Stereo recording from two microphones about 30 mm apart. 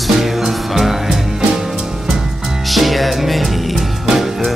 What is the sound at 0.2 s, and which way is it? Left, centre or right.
Music, centre.